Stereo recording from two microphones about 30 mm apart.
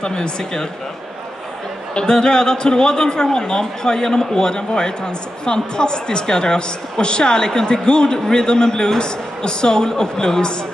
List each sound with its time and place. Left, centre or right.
0.0 s a man's voice: left
2.0 s a man's voice: left